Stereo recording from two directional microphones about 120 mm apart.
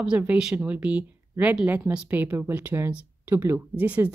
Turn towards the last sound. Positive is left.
turn(degrees=-15)  # may be behind; listen again after turning